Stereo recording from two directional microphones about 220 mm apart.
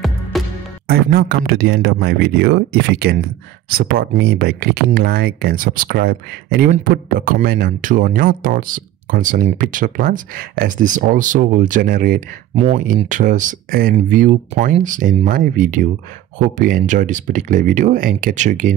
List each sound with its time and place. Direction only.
0.3 s music: centre (ahead or behind)
0.8 s speech: 45° right (ahead or behind)
12.5 s speech: 30° right (ahead or behind)